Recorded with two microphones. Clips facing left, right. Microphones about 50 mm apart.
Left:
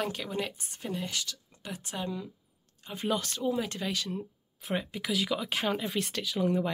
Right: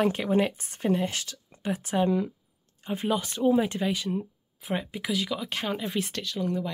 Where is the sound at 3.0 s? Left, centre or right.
Centre.